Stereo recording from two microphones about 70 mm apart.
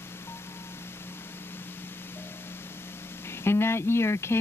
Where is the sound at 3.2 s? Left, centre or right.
Left.